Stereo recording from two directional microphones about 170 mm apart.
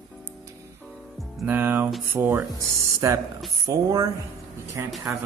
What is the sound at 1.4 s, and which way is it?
Speech, 10° right (ahead or behind).